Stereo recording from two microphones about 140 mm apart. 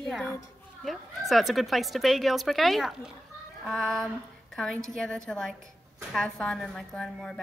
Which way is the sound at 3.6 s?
Centre (ahead or behind).